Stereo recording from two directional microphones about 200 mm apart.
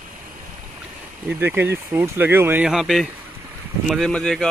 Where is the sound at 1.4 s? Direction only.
10° right (ahead or behind).